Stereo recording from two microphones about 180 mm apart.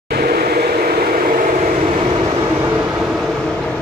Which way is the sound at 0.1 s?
60° right (ahead or behind).